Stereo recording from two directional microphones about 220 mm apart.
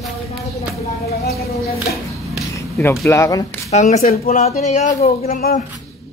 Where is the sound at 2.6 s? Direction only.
10° left (ahead or behind).